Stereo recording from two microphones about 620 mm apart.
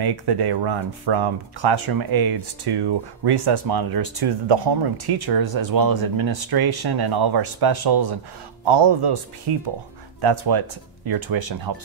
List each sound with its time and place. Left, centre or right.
0.0 s speech: right
9.5 s speech: right